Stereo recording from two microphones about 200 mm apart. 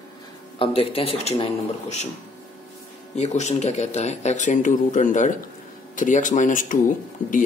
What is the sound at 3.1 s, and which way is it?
Speech, 35° left (ahead or behind).